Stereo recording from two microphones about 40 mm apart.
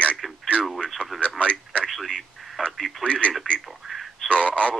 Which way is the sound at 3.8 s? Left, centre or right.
Centre.